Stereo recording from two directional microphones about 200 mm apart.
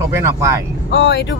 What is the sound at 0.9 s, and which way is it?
Speech, 55° left (ahead or behind).